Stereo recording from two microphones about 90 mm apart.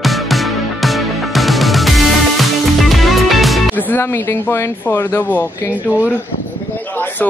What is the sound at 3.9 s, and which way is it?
Speech, 25° left (ahead or behind).